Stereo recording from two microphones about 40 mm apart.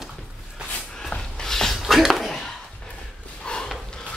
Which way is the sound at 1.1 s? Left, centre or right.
Left.